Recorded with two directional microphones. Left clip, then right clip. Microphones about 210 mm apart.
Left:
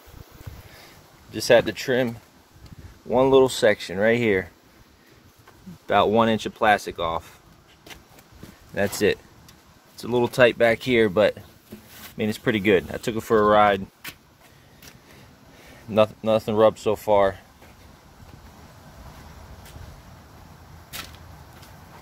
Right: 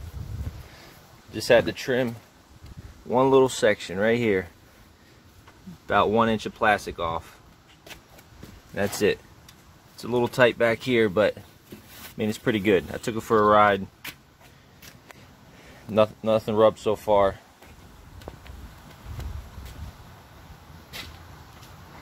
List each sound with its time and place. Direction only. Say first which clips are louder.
1.3 s speech: left 2 dB; 10° left (ahead or behind)
3.1 s speech: left 2 dB; centre (ahead or behind)
5.9 s speech: left 2 dB; 15° left (ahead or behind)
8.7 s speech: left 2 dB; 5° left (ahead or behind)
15.9 s speech: left 2 dB; 10° left (ahead or behind)